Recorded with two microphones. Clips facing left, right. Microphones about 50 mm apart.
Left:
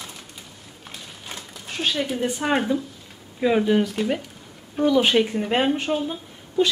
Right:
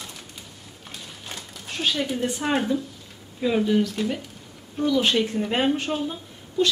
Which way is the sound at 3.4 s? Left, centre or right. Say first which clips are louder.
Left 2 dB; left.